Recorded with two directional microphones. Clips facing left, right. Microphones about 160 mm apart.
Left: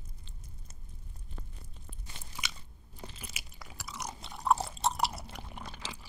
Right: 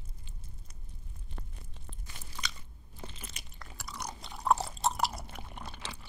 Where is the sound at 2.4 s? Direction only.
10° left (ahead or behind).